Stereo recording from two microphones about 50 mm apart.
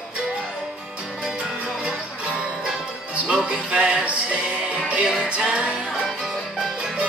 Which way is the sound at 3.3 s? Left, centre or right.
Centre.